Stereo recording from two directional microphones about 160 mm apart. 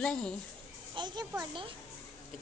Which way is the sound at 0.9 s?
30° right (ahead or behind).